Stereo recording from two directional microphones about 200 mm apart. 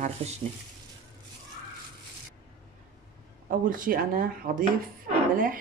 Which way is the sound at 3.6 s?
45° right (ahead or behind).